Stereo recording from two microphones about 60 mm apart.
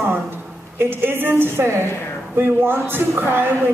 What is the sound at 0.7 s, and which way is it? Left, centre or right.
A woman's voice, right.